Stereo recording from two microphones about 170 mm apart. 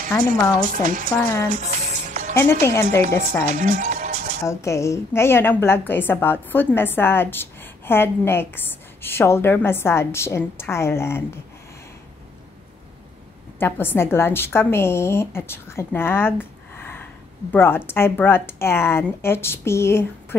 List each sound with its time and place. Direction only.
0.1 s a woman's voice: 15° left (ahead or behind)
0.6 s a woman's voice: 55° right (ahead or behind)
1.9 s music: 45° right (ahead or behind)
2.6 s a woman's voice: 15° left (ahead or behind)
3.4 s music: 45° right (ahead or behind)
4.5 s a woman's voice: 15° left (ahead or behind)
13.6 s a woman's voice: 10° left (ahead or behind)